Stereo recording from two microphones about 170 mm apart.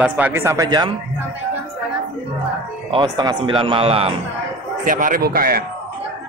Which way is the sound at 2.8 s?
25° right (ahead or behind).